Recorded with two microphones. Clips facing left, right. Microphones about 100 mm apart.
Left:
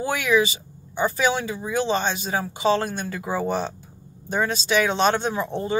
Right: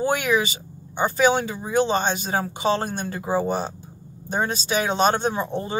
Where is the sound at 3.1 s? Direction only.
25° right (ahead or behind).